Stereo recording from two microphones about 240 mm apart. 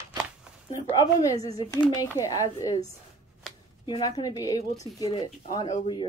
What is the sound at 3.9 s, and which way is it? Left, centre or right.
Speech, centre.